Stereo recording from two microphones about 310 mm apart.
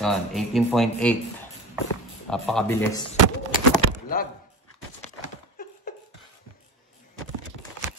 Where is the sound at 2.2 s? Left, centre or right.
Centre.